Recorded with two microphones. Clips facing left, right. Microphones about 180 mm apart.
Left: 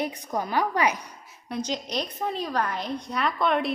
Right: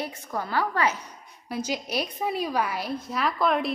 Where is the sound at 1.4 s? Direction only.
5° right (ahead or behind).